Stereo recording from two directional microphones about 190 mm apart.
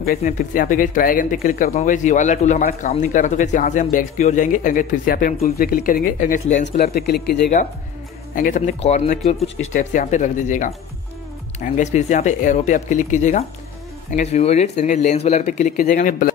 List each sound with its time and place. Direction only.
0.0 s speech: 50° left (ahead or behind)
1.7 s a man's voice: 35° left (ahead or behind)